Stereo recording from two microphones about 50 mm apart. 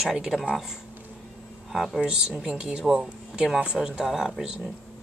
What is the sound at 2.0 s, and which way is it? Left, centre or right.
Speech, centre.